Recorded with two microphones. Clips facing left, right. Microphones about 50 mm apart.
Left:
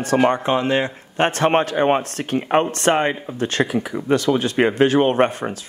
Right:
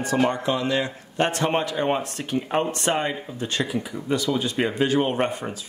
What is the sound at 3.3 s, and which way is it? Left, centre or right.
Speech, left.